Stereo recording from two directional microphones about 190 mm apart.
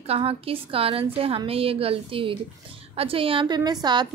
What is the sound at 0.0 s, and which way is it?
A woman's voice, 30° right (ahead or behind).